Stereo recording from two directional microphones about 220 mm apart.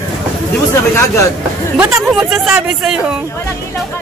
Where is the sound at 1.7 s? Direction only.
5° right (ahead or behind).